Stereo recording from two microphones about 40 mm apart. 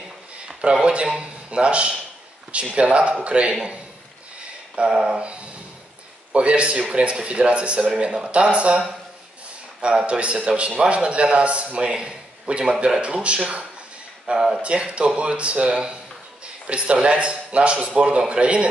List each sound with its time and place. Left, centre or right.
0.7 s a man's voice: right
4.7 s a sound: right
5.2 s a man's voice: right
14.2 s speech: centre
14.6 s a man's voice: right